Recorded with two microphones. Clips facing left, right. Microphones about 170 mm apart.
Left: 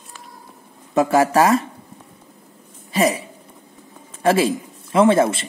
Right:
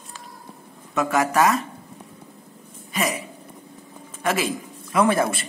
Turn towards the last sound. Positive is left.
turn(degrees=25)  # may be behind; listen again after turning